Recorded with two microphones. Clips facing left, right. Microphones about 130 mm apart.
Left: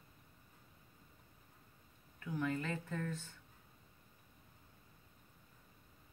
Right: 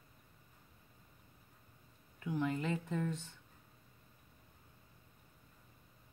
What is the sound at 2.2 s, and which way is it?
Speech, 20° right (ahead or behind).